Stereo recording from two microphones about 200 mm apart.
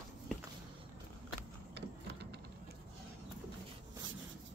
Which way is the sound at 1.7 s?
60° right (ahead or behind).